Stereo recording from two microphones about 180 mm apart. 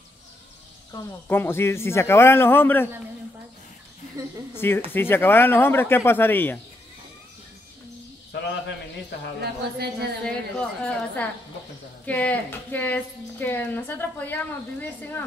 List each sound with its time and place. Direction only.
0.9 s a woman's voice: 10° left (ahead or behind)
4.6 s a woman's voice: 15° left (ahead or behind)
9.4 s a woman's voice: 65° right (ahead or behind)
10.2 s a woman's voice: 5° left (ahead or behind)